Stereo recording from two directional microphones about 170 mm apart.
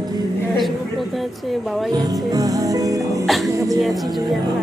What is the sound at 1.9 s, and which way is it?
Music, 25° right (ahead or behind).